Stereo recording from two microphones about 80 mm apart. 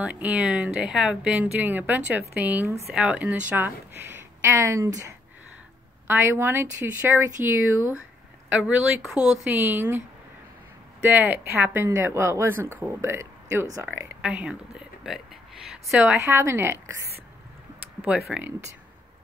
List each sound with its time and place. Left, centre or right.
0.0 s a woman's voice: centre
8.5 s a woman's voice: centre
9.5 s speech: right
14.2 s speech: centre
16.2 s speech: right
18.0 s speech: centre